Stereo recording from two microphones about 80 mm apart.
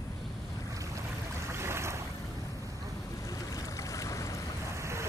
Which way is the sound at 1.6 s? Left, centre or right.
Right.